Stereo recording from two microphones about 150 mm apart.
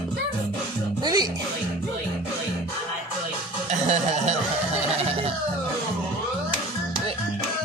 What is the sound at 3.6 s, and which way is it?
Music, 50° right (ahead or behind).